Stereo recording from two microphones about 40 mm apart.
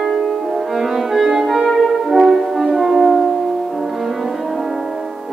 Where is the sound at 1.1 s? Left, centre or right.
Centre.